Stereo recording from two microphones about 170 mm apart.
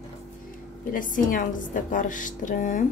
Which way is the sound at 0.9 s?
50° left (ahead or behind).